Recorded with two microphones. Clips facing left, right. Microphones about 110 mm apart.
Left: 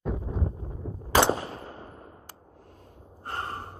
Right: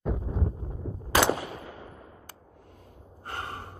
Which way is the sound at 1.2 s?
30° left (ahead or behind).